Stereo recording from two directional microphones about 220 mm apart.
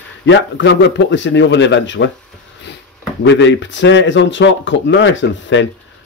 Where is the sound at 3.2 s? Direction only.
55° left (ahead or behind).